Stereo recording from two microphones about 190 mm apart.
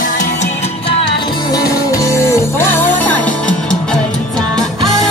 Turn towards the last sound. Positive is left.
turn(degrees=0)  # may be behind; listen again after turning